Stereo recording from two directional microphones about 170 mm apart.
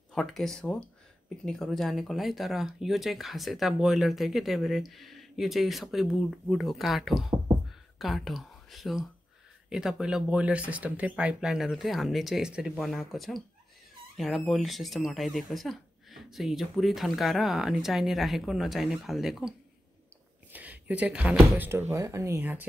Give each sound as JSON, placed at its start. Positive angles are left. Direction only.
{"t": 0.1, "sound": "speech", "side_deg": 0}
{"t": 20.5, "sound": "speech", "side_deg": -10}